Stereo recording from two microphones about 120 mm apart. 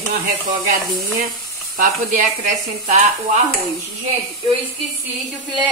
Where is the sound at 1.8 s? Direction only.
80° right.